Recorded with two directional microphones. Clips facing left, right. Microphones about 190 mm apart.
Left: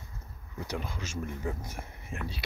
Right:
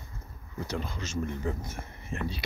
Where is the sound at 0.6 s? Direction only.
10° left (ahead or behind).